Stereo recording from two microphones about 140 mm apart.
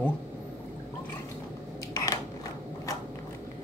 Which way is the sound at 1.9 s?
25° left (ahead or behind).